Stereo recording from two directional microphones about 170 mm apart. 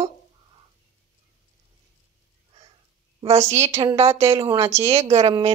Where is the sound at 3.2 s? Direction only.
40° right (ahead or behind).